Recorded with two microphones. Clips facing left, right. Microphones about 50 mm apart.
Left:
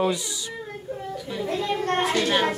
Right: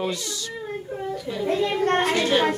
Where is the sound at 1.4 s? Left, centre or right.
Right.